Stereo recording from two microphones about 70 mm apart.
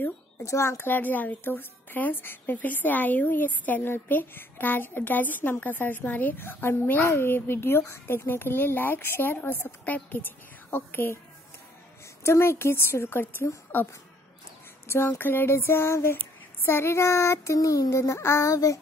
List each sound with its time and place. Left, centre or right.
0.5 s a woman's voice: left
12.2 s a woman's voice: left
14.9 s a woman's voice: left
16.6 s child singing: left